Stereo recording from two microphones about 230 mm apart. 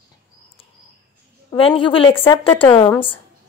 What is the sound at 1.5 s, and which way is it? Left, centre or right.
A woman's voice, left.